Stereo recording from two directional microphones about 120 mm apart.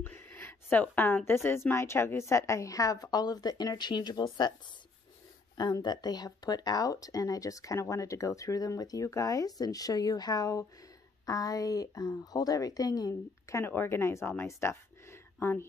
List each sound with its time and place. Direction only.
0.0 s speech: 15° left (ahead or behind); by 4.6 s 35° left (ahead or behind)
5.6 s speech: 35° left (ahead or behind); by 15.6 s 20° left (ahead or behind)